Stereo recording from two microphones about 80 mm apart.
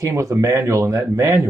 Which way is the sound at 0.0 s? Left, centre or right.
Right.